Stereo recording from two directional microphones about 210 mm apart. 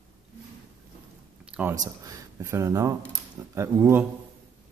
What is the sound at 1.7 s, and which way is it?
Speech, 15° right (ahead or behind).